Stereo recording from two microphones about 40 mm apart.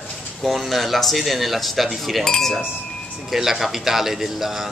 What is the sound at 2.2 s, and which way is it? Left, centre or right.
Wind chime, centre.